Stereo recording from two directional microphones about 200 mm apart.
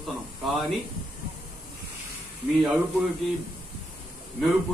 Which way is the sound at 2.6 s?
Centre (ahead or behind).